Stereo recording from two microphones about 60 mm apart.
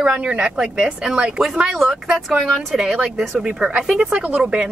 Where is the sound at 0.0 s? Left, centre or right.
Centre.